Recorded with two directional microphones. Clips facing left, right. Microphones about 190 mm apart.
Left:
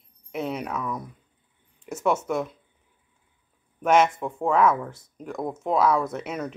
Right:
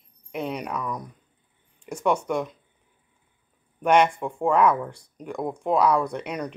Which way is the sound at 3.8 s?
5° left (ahead or behind).